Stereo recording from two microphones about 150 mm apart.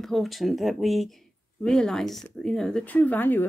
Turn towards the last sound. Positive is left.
turn(degrees=15)  # may be behind; listen again after turning